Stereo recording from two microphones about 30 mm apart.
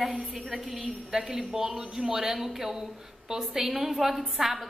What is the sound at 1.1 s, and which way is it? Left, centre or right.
A woman's voice, right.